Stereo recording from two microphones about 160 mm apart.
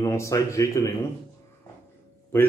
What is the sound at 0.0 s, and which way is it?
Speech, 20° left (ahead or behind).